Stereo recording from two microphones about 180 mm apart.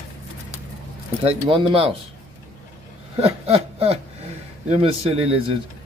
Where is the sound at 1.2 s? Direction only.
30° right (ahead or behind).